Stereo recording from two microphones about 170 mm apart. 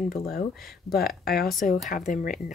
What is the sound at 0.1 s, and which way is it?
Speech, 60° left (ahead or behind).